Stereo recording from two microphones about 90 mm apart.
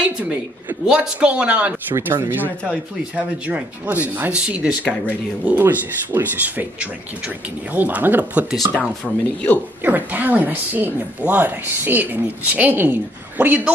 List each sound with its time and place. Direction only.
0.0 s a man's voice: 15° right (ahead or behind)
2.0 s speech: 30° right (ahead or behind)
8.7 s speech: 15° left (ahead or behind)
9.8 s speech: 20° right (ahead or behind)